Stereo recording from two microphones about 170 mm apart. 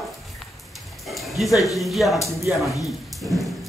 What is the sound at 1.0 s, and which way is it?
Dog, centre (ahead or behind).